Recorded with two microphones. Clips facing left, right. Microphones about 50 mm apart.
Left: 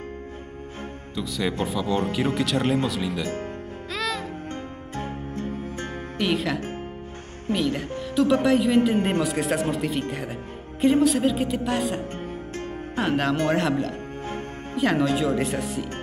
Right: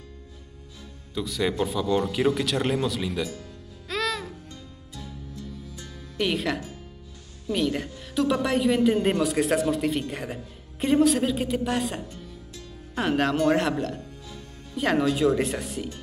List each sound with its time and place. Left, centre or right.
1.1 s speech: centre
3.9 s music: centre
4.2 s music: left
6.1 s speech: centre
12.1 s music: left
12.9 s speech: centre
14.2 s music: left
14.8 s speech: centre